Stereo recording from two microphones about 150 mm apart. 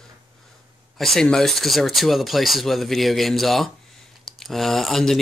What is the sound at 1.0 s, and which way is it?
Speech, centre (ahead or behind).